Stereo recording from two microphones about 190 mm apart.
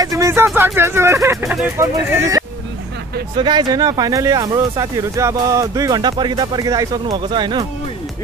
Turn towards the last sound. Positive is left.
turn(degrees=-25)  # may be behind; listen again after turning